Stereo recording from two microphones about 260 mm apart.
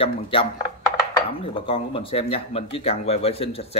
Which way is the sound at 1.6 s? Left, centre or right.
Centre.